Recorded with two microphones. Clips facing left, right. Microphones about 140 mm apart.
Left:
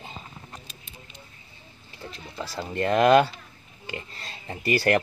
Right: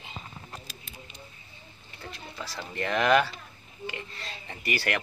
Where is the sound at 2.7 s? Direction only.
35° left (ahead or behind).